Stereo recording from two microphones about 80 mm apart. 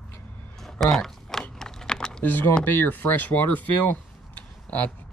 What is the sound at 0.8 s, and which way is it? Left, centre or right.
Typing, centre.